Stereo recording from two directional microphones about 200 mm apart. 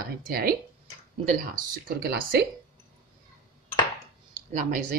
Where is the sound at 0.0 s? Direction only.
50° right (ahead or behind).